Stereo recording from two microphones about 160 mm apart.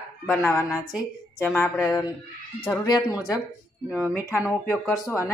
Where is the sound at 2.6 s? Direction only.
25° left (ahead or behind).